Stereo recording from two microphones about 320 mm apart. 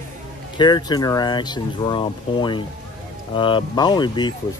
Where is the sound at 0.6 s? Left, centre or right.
Centre.